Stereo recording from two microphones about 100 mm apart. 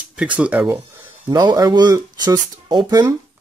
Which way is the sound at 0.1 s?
10° right (ahead or behind).